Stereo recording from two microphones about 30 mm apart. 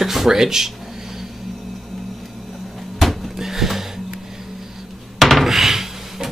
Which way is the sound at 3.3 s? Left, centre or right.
Centre.